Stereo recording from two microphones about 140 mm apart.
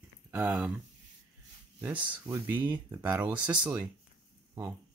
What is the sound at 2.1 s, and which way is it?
Speech, 10° right (ahead or behind).